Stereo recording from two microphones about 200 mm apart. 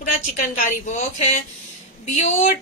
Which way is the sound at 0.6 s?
35° left (ahead or behind).